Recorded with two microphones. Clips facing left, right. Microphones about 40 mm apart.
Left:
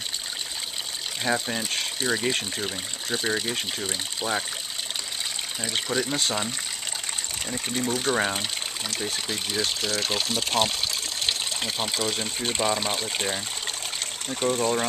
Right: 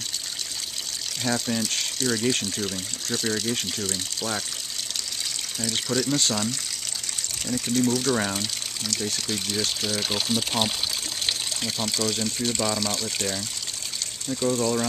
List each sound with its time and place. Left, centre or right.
1.2 s speech: left
5.6 s speech: left
11.6 s speech: left
14.3 s speech: left